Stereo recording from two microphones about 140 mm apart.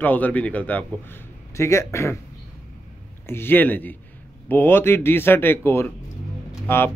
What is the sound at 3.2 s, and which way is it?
Speech, 15° left (ahead or behind).